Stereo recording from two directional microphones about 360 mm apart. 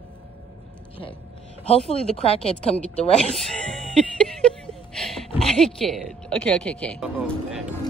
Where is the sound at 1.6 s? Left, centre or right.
Centre.